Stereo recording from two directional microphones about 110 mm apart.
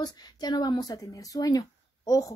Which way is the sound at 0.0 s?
40° left (ahead or behind).